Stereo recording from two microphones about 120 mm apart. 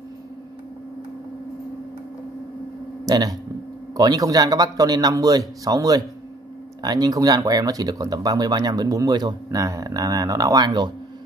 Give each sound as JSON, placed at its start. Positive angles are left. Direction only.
{"t": 3.1, "sound": "speech", "side_deg": -30}